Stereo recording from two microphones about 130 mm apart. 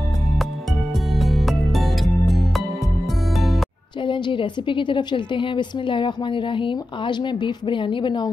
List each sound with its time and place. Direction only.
0.9 s music: centre (ahead or behind)
4.0 s a woman's voice: 40° left (ahead or behind)